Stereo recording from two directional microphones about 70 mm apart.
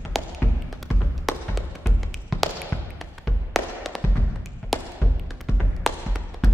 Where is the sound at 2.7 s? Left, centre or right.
Left.